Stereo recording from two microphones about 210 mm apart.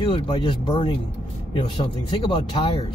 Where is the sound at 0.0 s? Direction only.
25° left (ahead or behind).